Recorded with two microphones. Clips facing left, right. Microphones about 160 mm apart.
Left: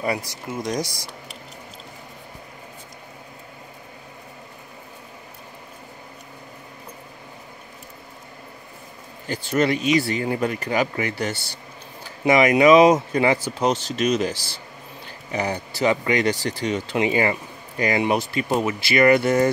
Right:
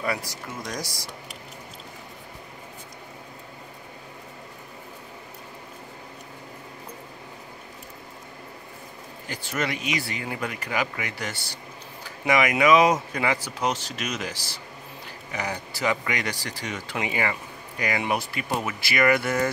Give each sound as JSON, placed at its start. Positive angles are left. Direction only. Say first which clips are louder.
{"t": 0.0, "sound": "speech", "louder": "left 3 dB", "side_deg": 25}
{"t": 9.3, "sound": "speech", "louder": "left 8 dB", "side_deg": 30}